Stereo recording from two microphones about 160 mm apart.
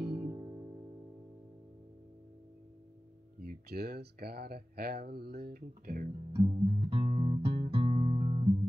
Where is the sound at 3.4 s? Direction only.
80° right.